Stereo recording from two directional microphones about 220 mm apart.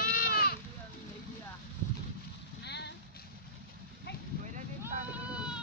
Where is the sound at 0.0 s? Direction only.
45° left (ahead or behind).